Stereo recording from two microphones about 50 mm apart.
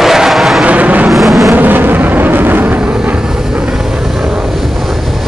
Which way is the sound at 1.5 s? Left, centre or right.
Right.